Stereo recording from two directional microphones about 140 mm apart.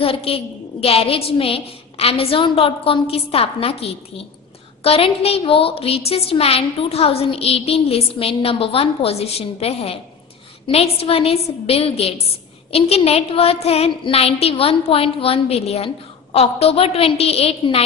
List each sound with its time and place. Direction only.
0.0 s a woman's voice: 45° left (ahead or behind)